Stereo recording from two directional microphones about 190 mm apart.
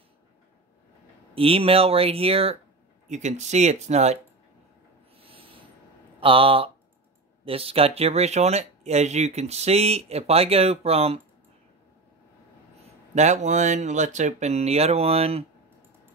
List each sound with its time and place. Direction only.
1.3 s speech: 30° right (ahead or behind)
5.1 s owl: 30° right (ahead or behind)
6.1 s speech: 30° right (ahead or behind)
13.1 s speech: 35° right (ahead or behind)